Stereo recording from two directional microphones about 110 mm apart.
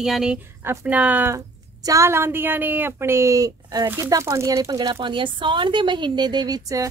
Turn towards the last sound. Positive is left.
turn(degrees=-35)  # may be behind; listen again after turning